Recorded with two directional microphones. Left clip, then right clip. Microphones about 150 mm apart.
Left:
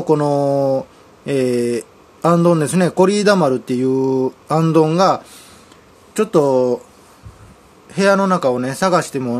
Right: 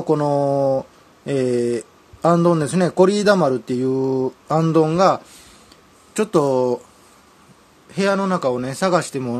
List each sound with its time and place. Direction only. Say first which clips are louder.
0.0 s speech: left 3 dB; 5° right (ahead or behind)
6.1 s speech: left 3 dB; 20° right (ahead or behind)
7.9 s speech: left 5 dB; 10° right (ahead or behind)